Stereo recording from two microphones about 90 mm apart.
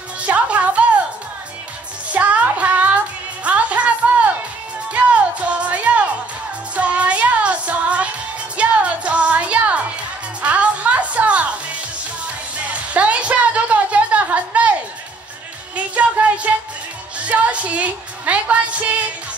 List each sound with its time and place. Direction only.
0.2 s music: 15° right (ahead or behind)
2.1 s music: 15° right (ahead or behind)
12.7 s a sound: 15° right (ahead or behind)
15.7 s music: 15° right (ahead or behind)
17.2 s a woman's voice: 15° right (ahead or behind)